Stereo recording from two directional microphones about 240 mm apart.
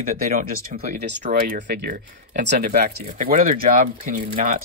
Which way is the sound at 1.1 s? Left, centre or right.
Right.